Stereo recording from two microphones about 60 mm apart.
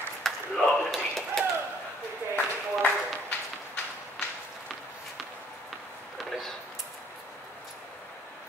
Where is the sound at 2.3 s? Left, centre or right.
Left.